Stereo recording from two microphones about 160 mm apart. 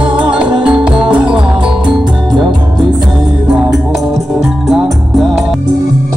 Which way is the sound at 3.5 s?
5° right (ahead or behind).